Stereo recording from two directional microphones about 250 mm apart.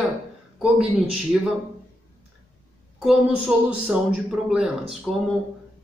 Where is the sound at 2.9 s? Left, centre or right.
Centre.